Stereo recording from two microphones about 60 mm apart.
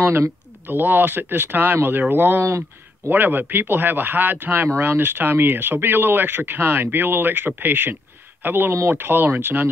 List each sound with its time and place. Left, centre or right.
0.7 s speech: right